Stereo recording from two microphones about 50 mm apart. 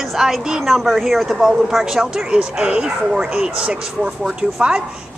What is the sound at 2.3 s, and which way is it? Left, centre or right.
A woman's voice, right.